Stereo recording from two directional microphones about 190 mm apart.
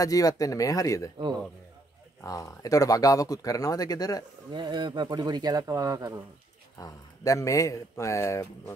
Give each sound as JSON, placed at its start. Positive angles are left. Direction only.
{"t": 0.0, "sound": "speech", "side_deg": 20}
{"t": 1.1, "sound": "speech", "side_deg": -25}
{"t": 2.2, "sound": "speech", "side_deg": 15}
{"t": 4.5, "sound": "speech", "side_deg": -25}
{"t": 6.8, "sound": "speech", "side_deg": 15}